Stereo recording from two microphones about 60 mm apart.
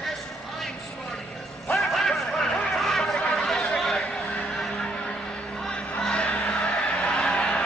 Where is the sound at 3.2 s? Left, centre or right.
Centre.